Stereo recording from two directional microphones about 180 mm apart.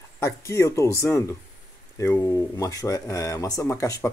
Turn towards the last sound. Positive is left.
turn(degrees=20)  # may be behind; listen again after turning